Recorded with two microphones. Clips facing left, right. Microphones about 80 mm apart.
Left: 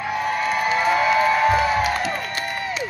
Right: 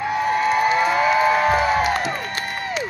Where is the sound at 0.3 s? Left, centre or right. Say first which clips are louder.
Right 4 dB; right.